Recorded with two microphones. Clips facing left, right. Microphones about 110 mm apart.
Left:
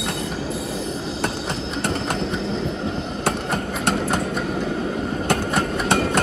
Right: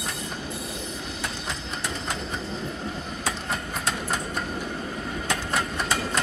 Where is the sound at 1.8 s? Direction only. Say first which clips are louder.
Left 9 dB; 65° left (ahead or behind).